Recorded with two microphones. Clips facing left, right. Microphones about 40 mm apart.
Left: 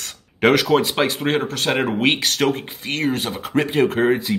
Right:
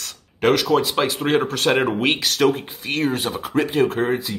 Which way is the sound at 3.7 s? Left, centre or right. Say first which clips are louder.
Left 4 dB; centre.